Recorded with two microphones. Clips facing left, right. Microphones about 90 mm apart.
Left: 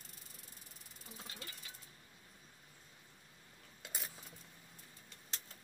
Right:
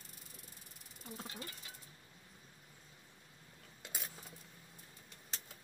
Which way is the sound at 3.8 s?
Centre (ahead or behind).